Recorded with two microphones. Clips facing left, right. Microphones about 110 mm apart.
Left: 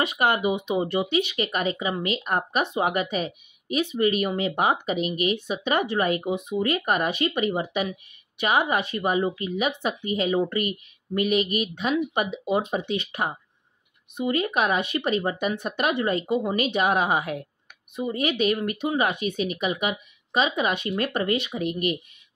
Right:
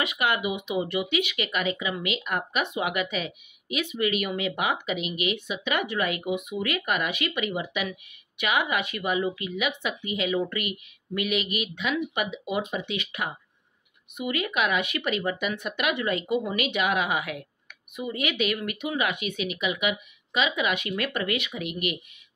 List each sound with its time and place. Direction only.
0.0 s speech: 35° left (ahead or behind)